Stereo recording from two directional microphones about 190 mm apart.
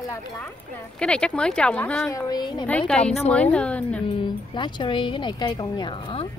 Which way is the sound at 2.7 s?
5° left (ahead or behind).